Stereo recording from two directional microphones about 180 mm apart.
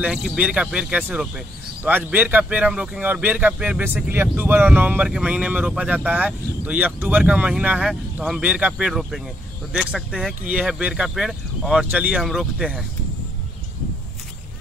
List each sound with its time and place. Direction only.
0.0 s speech: 5° right (ahead or behind)